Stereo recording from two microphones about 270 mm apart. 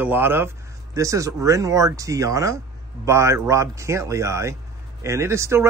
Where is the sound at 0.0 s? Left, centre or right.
Centre.